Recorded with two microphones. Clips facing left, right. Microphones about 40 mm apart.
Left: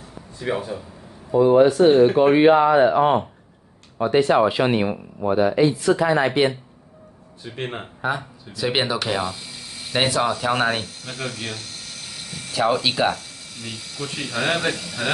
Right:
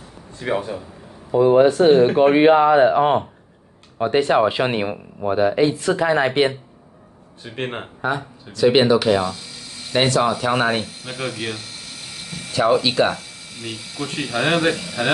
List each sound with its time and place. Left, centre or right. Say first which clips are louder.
0.4 s speech: right 2 dB; right
7.5 s speech: right 3 dB; right
8.0 s speech: right 1 dB; centre
10.9 s speech: right 3 dB; centre
13.1 s speech: even; centre